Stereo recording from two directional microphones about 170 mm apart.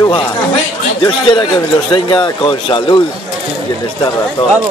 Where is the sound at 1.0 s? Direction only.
30° left (ahead or behind).